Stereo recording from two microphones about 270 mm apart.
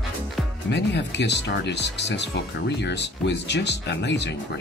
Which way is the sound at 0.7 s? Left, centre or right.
Left.